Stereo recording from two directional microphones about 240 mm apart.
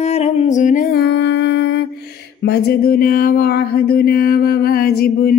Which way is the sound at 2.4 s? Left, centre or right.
Left.